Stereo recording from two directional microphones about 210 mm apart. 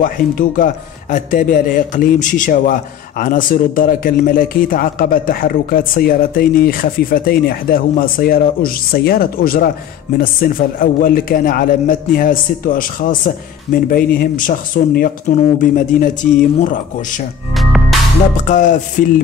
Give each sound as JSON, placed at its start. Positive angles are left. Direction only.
{"t": 0.0, "sound": "a man's voice", "side_deg": 40}
{"t": 17.6, "sound": "music", "side_deg": 0}
{"t": 18.3, "sound": "a man's voice", "side_deg": 35}